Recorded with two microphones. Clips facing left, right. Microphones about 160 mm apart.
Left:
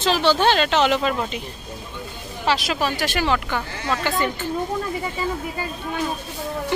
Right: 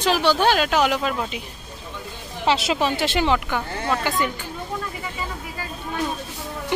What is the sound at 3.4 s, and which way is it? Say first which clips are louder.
Speech: right 1 dB; 10° right (ahead or behind).